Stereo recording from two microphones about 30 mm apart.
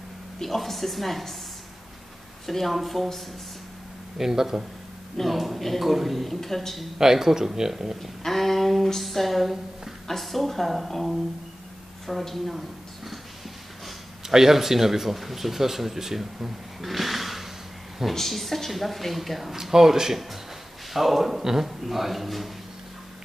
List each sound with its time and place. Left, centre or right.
0.4 s speech: centre
2.4 s speech: centre
4.2 s speech: centre
5.2 s a man's voice: centre
7.0 s speech: centre
8.2 s a sound: centre
10.0 s speech: centre
12.1 s speech: centre
14.2 s speech: centre
16.8 s snort: centre
18.1 s speech: centre
19.5 s speech: centre